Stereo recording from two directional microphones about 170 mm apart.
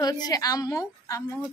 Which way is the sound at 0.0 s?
25° left (ahead or behind).